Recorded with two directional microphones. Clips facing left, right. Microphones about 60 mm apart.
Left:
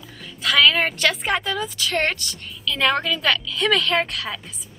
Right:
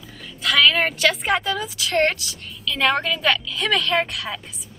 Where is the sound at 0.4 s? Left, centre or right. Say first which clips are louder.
Even; centre.